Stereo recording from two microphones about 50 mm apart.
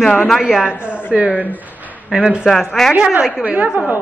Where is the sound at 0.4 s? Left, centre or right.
Centre.